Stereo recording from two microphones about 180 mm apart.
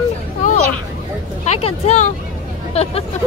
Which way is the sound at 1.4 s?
35° left (ahead or behind).